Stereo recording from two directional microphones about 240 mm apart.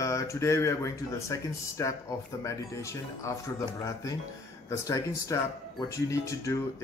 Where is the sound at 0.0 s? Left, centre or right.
Centre.